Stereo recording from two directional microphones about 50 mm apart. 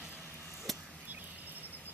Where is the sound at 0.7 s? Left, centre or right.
Centre.